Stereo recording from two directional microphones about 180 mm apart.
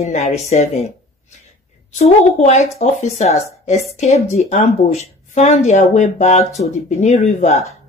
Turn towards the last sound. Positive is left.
turn(degrees=40)  # may be behind; listen again after turning